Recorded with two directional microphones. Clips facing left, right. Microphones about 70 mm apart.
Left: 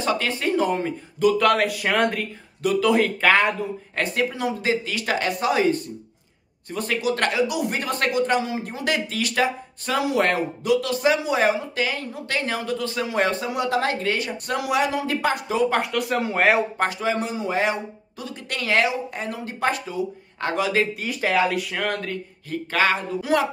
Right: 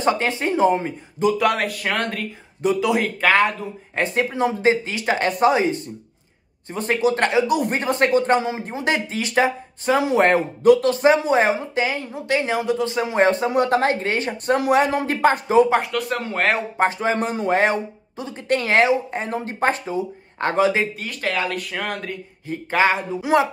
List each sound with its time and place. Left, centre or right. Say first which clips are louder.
0.0 s speech: right 3 dB; right
1.4 s speech: left 1 dB; centre
3.9 s speech: right 3 dB; right
7.5 s speech: right 5 dB; right
7.8 s speech: right 4 dB; right
15.8 s speech: left 1 dB; centre
17.0 s speech: right 3 dB; right
18.1 s speech: right 10 dB; right
21.0 s speech: left 3 dB; centre
22.5 s speech: right 3 dB; right